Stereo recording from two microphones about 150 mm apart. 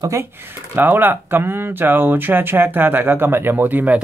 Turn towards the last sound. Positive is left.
turn(degrees=-10)  # may be behind; listen again after turning